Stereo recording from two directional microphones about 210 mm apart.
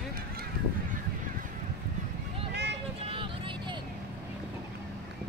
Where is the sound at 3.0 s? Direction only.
25° right (ahead or behind).